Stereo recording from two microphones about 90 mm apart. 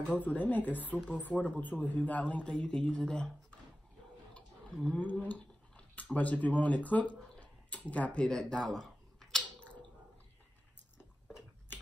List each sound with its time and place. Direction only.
0.1 s a man's voice: 15° left (ahead or behind)
4.8 s speech: 15° left (ahead or behind)